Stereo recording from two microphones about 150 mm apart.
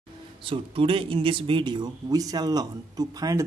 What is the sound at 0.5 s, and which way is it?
Speech, 35° right (ahead or behind).